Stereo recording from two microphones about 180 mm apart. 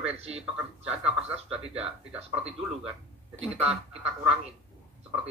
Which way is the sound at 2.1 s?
5° right (ahead or behind).